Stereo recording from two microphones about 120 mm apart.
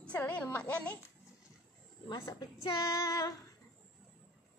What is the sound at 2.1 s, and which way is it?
Speech, 35° left (ahead or behind).